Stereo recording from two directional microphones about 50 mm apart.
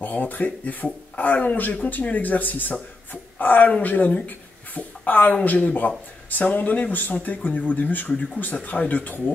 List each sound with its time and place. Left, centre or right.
0.0 s speech: left